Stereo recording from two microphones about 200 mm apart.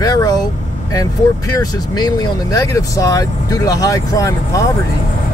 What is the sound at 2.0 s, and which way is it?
Speech, 20° left (ahead or behind).